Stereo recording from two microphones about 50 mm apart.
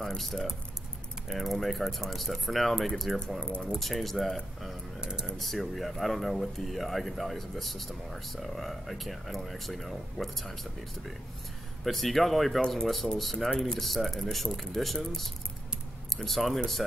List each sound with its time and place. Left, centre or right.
0.0 s speech: centre
3.3 s speech: centre
3.7 s speech: centre
5.0 s speech: centre
5.4 s speech: centre
11.8 s speech: centre